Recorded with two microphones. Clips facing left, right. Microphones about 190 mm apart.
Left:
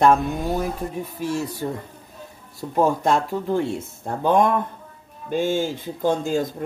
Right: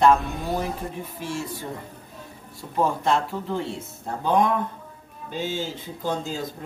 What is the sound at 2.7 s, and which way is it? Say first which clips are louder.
Speech: left 3 dB; 45° left (ahead or behind).